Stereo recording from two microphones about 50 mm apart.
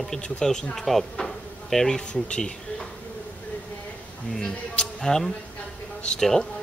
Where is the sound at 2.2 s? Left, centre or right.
Left.